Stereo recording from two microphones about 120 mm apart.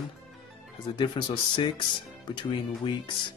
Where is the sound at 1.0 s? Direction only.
40° left (ahead or behind).